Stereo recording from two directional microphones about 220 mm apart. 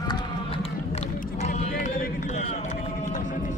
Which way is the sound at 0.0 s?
20° left (ahead or behind).